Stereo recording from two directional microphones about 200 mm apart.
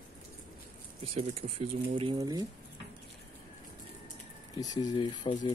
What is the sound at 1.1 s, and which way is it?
Speech, 30° right (ahead or behind).